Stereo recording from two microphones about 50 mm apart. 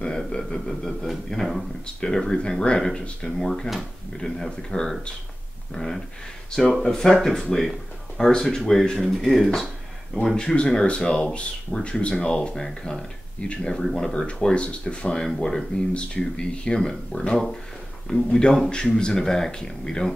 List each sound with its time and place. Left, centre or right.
0.0 s a sound: centre
0.7 s speech: centre
15.9 s speech: left